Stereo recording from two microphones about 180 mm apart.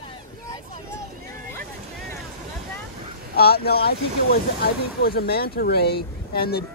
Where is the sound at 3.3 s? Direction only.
60° left (ahead or behind).